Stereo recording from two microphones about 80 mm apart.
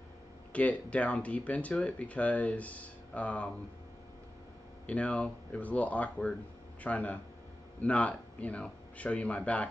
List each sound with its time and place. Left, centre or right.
0.5 s speech: centre
4.8 s speech: centre